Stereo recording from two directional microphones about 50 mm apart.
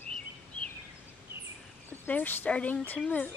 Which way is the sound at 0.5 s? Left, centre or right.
Left.